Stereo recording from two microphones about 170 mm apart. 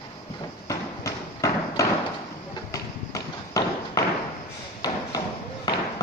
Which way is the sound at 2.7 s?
20° left (ahead or behind).